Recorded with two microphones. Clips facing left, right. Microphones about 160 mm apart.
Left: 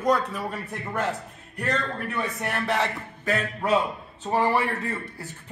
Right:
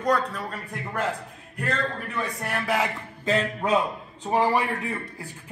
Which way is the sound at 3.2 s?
20° right (ahead or behind).